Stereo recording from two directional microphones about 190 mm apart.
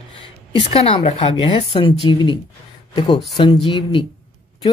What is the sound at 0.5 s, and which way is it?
Speech, 30° left (ahead or behind).